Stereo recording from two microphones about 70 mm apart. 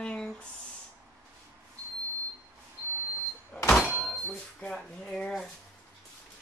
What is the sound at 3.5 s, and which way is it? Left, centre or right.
Vehicle, centre.